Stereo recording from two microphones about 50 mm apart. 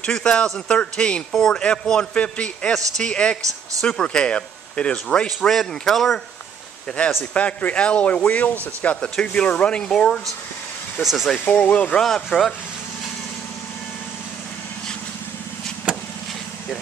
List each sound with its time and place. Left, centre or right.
0.0 s speech: centre
5.5 s speech: centre
7.3 s speech: left
9.0 s speech: centre
9.8 s speech: centre
11.0 s speech: centre
11.3 s speech: left
11.9 s speech: centre